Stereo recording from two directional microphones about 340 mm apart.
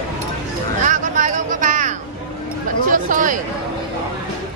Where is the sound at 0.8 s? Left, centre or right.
Right.